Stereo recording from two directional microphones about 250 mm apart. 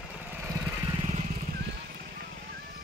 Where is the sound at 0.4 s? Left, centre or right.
Centre.